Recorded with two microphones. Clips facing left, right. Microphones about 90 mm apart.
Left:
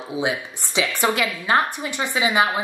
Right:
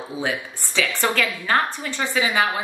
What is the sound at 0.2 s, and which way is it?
A woman's voice, 15° left (ahead or behind).